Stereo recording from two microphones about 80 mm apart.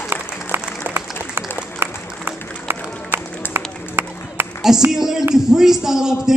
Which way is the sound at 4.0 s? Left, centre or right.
Right.